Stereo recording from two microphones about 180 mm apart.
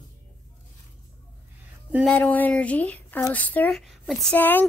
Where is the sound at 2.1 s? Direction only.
10° left (ahead or behind).